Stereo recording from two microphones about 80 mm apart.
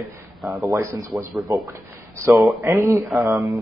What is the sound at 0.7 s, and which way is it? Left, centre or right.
Speech, right.